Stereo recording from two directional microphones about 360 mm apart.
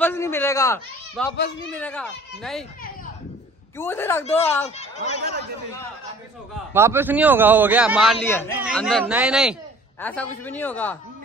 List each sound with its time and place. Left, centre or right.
0.0 s a man's voice: centre
3.7 s a man's voice: centre
4.6 s speech: centre
6.7 s a man's voice: centre